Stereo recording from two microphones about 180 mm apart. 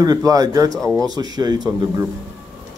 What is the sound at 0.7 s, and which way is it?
Speech, 5° left (ahead or behind).